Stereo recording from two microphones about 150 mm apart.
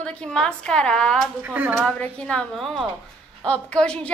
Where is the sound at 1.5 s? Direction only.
15° right (ahead or behind).